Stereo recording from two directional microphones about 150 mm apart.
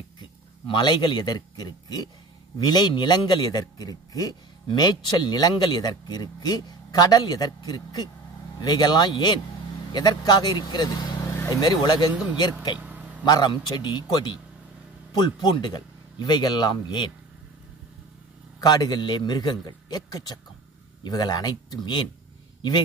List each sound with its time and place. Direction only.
0.2 s a man's voice: 30° left (ahead or behind)
12.1 s speech: 10° right (ahead or behind)
12.7 s vehicle: 10° right (ahead or behind)
13.2 s a man's voice: 30° left (ahead or behind)
18.6 s a man's voice: 25° left (ahead or behind)